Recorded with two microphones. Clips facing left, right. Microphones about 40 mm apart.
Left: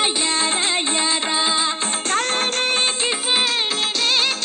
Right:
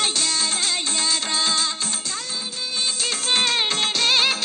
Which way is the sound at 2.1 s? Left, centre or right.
Left.